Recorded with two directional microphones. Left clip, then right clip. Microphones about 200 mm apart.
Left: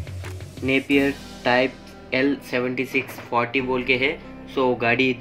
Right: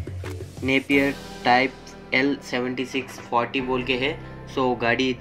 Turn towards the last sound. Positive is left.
turn(degrees=-15)  # may be behind; listen again after turning